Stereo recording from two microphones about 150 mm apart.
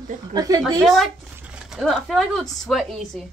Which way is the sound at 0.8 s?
Centre (ahead or behind).